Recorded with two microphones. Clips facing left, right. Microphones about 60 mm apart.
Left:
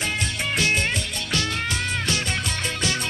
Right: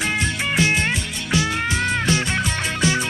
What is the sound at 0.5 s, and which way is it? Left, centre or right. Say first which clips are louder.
Music: right 3 dB; centre.